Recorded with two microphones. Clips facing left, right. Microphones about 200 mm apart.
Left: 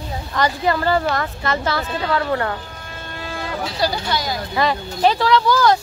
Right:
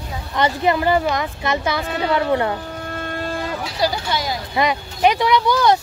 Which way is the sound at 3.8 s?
20° right (ahead or behind).